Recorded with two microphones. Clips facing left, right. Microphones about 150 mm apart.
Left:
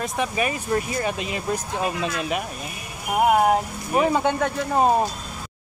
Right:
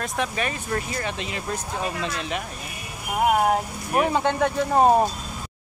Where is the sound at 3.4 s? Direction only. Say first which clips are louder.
Left 2 dB; centre (ahead or behind).